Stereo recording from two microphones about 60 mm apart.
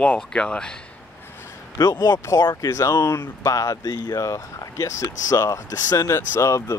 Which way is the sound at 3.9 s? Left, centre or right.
Left.